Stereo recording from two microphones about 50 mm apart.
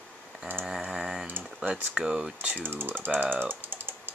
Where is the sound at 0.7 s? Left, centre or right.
Centre.